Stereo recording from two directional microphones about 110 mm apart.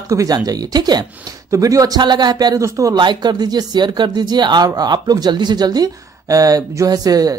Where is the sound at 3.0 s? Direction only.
40° right (ahead or behind).